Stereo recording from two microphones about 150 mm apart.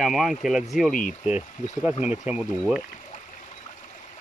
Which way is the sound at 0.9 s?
60° left (ahead or behind).